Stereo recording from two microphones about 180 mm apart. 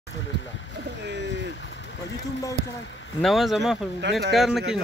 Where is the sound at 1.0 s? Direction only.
75° right (ahead or behind).